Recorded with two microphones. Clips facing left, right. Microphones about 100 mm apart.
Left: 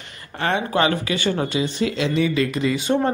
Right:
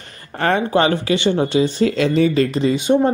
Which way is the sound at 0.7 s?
35° right (ahead or behind).